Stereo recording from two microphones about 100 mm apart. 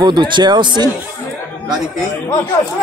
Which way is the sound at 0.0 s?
50° right (ahead or behind).